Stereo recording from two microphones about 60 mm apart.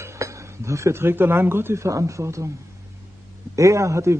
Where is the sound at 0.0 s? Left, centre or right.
Right.